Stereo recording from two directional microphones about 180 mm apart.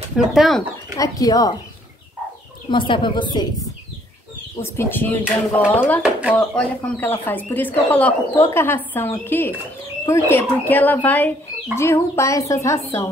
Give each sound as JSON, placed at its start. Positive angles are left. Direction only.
{"t": 0.2, "sound": "speech", "side_deg": 0}
{"t": 0.9, "sound": "a woman's voice", "side_deg": 20}
{"t": 2.7, "sound": "a woman's voice", "side_deg": 25}
{"t": 4.6, "sound": "speech", "side_deg": 10}